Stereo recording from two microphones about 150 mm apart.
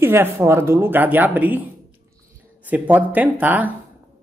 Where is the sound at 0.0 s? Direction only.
15° right (ahead or behind).